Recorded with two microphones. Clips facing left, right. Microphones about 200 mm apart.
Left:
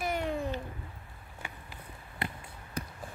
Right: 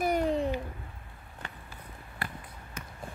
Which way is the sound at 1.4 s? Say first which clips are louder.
Even; 15° left (ahead or behind).